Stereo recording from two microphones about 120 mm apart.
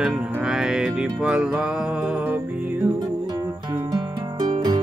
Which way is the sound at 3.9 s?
35° right (ahead or behind).